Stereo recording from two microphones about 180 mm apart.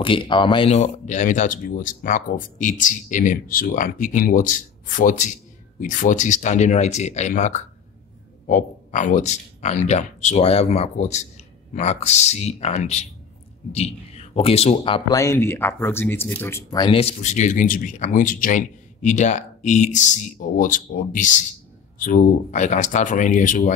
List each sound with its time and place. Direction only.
0.0 s speech: 30° left (ahead or behind)
16.8 s speech: 35° left (ahead or behind)